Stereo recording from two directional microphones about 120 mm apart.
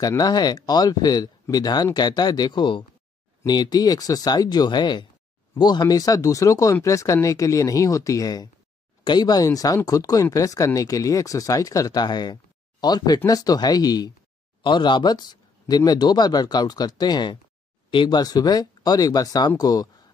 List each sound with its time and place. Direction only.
0.2 s speech: 35° left (ahead or behind)